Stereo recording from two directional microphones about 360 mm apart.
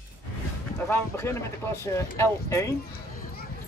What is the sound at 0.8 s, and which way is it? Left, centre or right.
Speech, centre.